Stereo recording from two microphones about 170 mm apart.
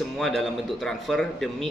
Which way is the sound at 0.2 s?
Centre (ahead or behind).